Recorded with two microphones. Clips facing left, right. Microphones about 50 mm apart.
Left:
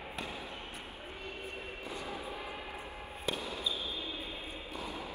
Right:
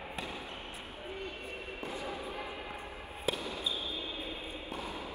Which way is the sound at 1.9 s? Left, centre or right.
Right.